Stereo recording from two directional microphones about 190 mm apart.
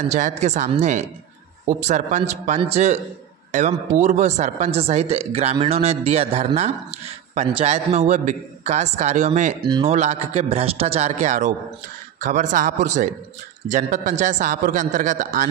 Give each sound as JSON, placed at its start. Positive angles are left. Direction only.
{"t": 0.0, "sound": "a woman's voice", "side_deg": -40}
{"t": 9.7, "sound": "speech", "side_deg": -25}
{"t": 9.9, "sound": "a woman's voice", "side_deg": -35}